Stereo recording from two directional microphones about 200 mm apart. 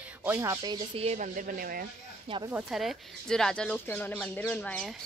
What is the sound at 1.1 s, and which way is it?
Speech, 40° right (ahead or behind).